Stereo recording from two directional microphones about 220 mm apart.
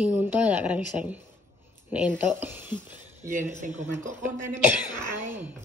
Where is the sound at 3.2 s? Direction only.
35° right (ahead or behind).